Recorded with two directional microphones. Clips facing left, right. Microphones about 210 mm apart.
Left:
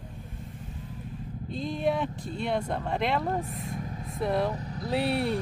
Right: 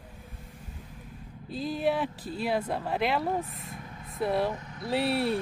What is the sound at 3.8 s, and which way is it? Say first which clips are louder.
Vehicle: left 7 dB; 35° left (ahead or behind).